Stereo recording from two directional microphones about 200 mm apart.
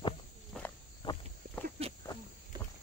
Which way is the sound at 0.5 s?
Centre (ahead or behind).